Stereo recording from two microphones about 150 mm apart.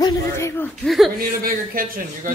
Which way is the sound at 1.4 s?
70° right (ahead or behind).